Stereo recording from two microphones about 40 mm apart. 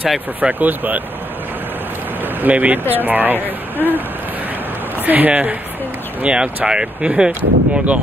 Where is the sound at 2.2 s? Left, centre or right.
Right.